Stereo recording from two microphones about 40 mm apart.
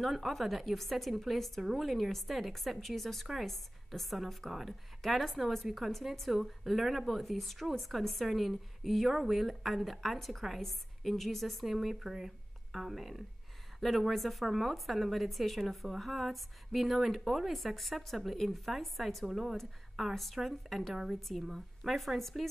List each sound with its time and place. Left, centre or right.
0.0 s a woman's voice: centre
20.9 s a woman's voice: centre